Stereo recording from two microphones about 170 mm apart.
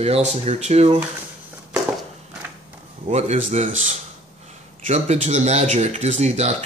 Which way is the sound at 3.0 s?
40° right (ahead or behind).